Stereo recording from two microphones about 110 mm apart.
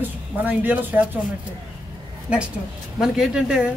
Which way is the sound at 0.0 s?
15° right (ahead or behind).